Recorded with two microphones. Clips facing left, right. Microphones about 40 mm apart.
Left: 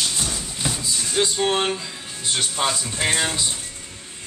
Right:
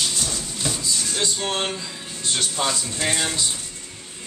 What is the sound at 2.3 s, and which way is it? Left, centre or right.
Speech, centre.